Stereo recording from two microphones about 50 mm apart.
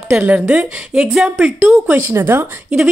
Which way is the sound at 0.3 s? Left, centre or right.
Right.